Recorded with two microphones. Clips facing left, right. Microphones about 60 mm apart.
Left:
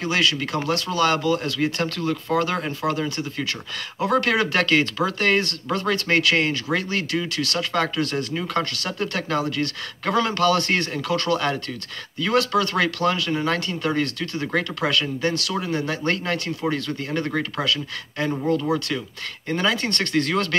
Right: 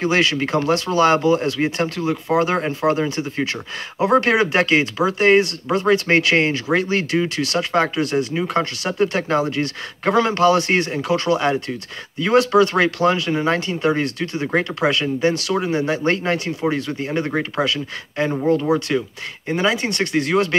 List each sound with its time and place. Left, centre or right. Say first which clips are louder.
0.0 s speech: right 4 dB; right